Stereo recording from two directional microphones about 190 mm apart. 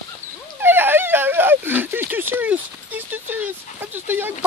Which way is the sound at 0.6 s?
10° right (ahead or behind).